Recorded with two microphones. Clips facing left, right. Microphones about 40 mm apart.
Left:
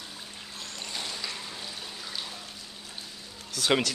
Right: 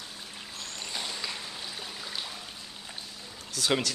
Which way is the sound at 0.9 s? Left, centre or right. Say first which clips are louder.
Right 1 dB; centre.